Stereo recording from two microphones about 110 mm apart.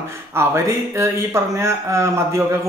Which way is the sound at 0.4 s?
25° right (ahead or behind).